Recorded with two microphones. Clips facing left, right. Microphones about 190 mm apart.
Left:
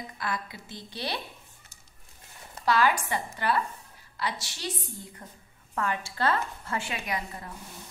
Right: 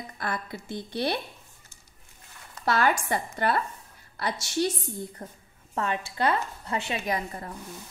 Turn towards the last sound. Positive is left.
turn(degrees=-40)  # may be behind; listen again after turning